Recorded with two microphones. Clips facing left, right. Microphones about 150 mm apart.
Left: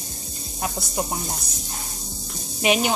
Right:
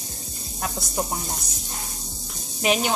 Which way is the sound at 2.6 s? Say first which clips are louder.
Left 2 dB; 10° left (ahead or behind).